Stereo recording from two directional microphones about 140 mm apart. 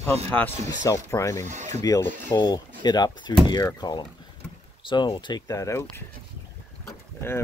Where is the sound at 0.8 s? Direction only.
25° left (ahead or behind).